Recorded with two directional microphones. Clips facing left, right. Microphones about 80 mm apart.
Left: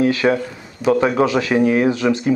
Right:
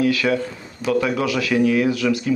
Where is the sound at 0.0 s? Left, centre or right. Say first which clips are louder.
Left 3 dB; left.